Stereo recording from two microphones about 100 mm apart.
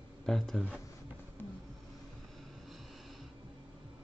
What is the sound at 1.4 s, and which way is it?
Vehicle, 20° left (ahead or behind).